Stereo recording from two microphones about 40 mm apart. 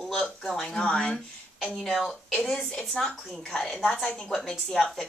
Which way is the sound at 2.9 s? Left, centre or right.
Centre.